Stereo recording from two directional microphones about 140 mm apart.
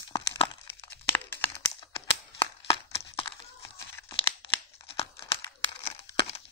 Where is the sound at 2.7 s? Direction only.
45° left (ahead or behind).